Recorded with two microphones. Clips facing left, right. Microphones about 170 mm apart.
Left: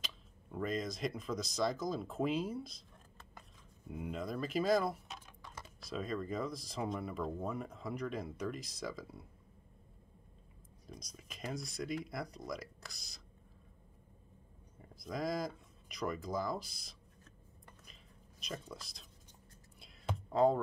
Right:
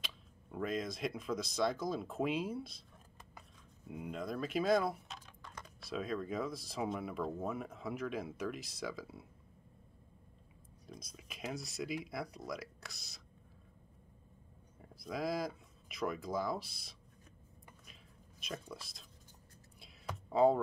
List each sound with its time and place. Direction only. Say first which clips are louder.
0.0 s speech: even; centre (ahead or behind)
3.2 s a sound: even; 5° right (ahead or behind)
5.2 s speech: even; 5° left (ahead or behind)
10.9 s speech: even; 5° right (ahead or behind)
14.8 s speech: even; 5° right (ahead or behind)
18.4 s speech: even; centre (ahead or behind)
20.2 s speech: right 1 dB; 5° right (ahead or behind)